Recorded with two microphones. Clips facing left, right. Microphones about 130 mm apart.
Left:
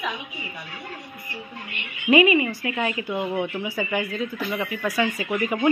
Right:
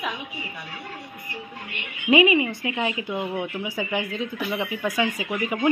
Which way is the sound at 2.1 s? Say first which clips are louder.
Left 1 dB; 15° right (ahead or behind).